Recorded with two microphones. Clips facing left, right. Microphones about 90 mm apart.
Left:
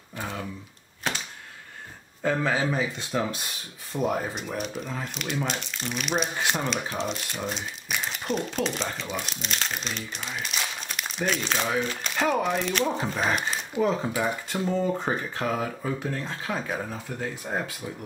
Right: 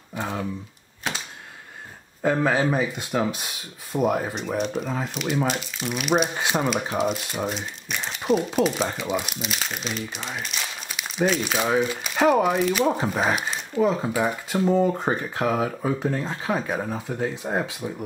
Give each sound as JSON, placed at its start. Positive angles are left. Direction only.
{"t": 0.1, "sound": "speech", "side_deg": -20}
{"t": 2.2, "sound": "speech", "side_deg": -15}
{"t": 5.1, "sound": "speech", "side_deg": -5}
{"t": 6.3, "sound": "speech", "side_deg": -15}
{"t": 14.6, "sound": "speech", "side_deg": -20}